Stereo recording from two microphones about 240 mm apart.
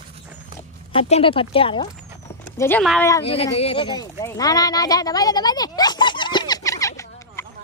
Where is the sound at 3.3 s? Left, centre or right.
Left.